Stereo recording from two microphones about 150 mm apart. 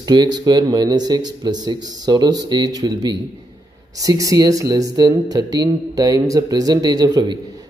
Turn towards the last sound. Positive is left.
turn(degrees=-25)  # may be behind; listen again after turning